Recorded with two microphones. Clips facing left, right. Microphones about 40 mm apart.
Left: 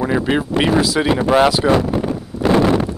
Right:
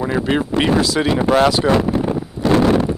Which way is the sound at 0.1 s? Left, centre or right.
Centre.